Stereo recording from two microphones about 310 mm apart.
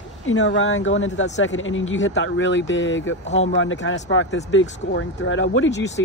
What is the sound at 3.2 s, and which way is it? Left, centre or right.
Speech, left.